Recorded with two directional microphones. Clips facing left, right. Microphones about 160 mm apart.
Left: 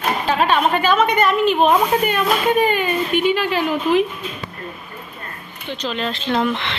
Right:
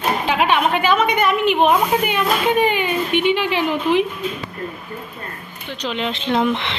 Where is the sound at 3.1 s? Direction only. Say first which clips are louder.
Even; 70° right (ahead or behind).